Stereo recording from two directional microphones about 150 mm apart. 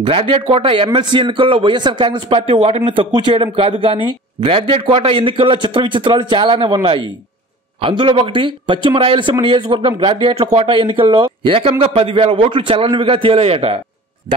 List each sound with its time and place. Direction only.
0.0 s a man's voice: 35° right (ahead or behind)